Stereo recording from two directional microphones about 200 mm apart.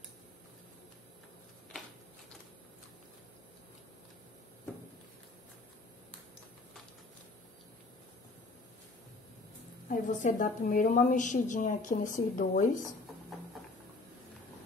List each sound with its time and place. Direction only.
9.8 s a woman's voice: 40° left (ahead or behind)